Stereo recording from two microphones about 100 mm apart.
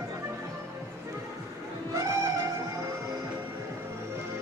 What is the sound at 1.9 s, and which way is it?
Music, 30° right (ahead or behind).